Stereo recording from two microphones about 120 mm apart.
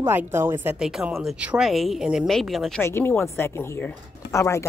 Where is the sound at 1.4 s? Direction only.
10° right (ahead or behind).